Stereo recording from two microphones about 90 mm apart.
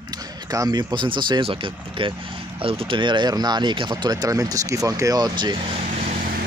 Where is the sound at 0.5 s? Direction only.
45° right (ahead or behind); by 2.1 s 75° right (ahead or behind).